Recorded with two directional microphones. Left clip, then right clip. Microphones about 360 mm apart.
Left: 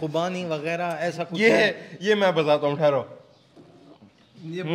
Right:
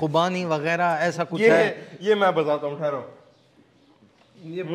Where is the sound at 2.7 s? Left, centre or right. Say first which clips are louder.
Left 5 dB; left.